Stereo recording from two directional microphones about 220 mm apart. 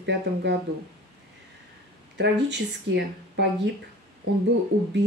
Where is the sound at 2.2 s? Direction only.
50° right (ahead or behind).